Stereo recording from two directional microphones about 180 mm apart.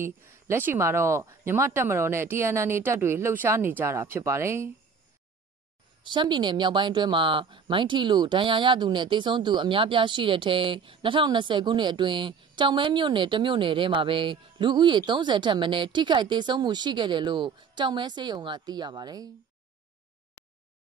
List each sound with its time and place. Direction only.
0.0 s speech: 15° right (ahead or behind)
6.0 s speech: 25° right (ahead or behind)